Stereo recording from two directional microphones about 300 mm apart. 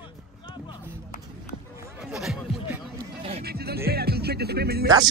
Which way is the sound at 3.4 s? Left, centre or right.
Right.